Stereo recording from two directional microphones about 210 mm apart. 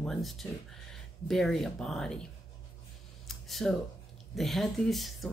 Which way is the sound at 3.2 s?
Centre (ahead or behind).